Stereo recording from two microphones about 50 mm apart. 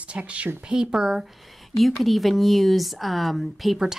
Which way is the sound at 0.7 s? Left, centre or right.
Centre.